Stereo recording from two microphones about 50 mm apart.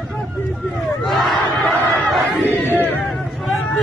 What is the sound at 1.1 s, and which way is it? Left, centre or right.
Battle cry, centre.